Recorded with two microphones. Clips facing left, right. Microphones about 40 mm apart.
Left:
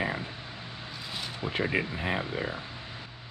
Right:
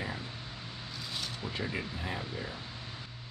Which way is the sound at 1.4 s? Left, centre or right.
Left.